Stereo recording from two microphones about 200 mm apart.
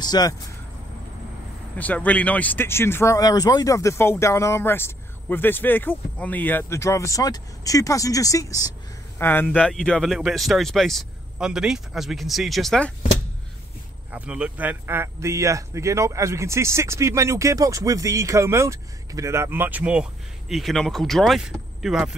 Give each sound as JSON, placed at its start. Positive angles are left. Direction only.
{"t": 0.0, "sound": "speech", "side_deg": 20}
{"t": 1.8, "sound": "speech", "side_deg": 5}
{"t": 14.1, "sound": "speech", "side_deg": -5}